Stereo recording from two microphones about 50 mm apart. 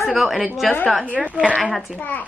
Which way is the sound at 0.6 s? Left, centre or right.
Centre.